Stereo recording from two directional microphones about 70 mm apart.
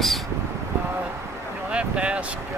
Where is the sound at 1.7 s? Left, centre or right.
Centre.